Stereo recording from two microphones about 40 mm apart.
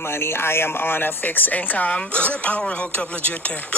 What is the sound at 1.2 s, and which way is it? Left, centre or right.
Speech, left.